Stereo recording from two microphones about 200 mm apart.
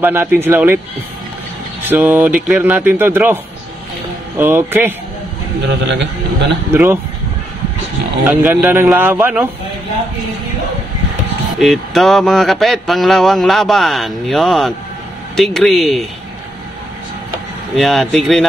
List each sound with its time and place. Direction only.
0.0 s a man's voice: 10° right (ahead or behind)
1.9 s a man's voice: 10° right (ahead or behind)
4.4 s a man's voice: 10° right (ahead or behind)
5.7 s a man's voice: 60° right (ahead or behind)
6.7 s a man's voice: 10° right (ahead or behind)
8.2 s a man's voice: 5° right (ahead or behind)
11.6 s speech: centre (ahead or behind)
17.7 s speech: centre (ahead or behind)